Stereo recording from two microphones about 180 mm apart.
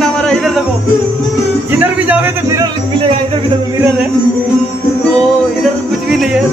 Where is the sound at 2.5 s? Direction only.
25° right (ahead or behind).